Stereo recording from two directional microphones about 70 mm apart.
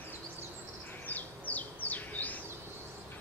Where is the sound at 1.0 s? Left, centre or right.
Left.